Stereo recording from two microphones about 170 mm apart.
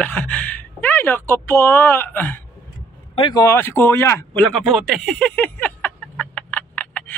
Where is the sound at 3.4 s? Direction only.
15° left (ahead or behind).